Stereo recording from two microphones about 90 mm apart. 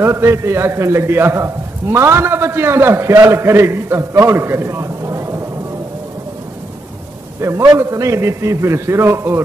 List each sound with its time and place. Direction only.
0.0 s a man's voice: 30° right (ahead or behind)
7.4 s a man's voice: 35° right (ahead or behind)